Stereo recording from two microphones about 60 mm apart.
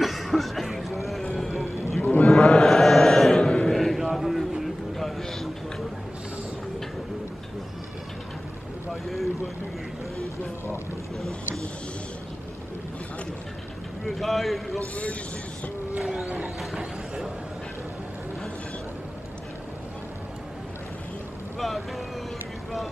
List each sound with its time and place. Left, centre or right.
0.0 s a sound: centre
2.0 s sheep: left
2.2 s chant: centre
4.0 s a sound: centre
14.0 s a man's voice: centre
16.0 s music: centre
21.5 s vehicle: centre